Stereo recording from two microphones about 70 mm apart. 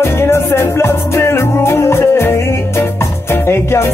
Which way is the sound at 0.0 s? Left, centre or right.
Left.